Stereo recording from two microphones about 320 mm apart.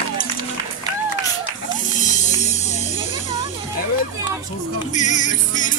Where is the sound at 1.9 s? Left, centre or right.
Left.